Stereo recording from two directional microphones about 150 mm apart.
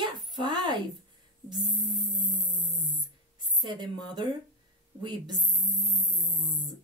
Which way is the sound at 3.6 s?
30° right (ahead or behind).